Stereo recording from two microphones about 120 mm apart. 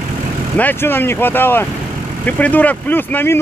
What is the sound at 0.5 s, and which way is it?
Speech, 15° left (ahead or behind).